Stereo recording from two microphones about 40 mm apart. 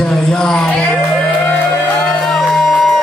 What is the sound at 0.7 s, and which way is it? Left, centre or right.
Speech, left.